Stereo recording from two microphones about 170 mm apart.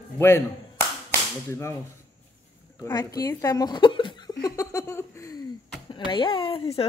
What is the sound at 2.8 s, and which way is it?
Speech, 20° left (ahead or behind).